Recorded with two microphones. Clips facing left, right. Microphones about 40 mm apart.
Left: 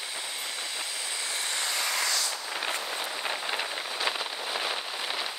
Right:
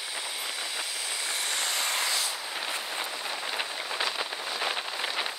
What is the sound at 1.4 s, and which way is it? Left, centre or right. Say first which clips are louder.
Vehicle: even; right.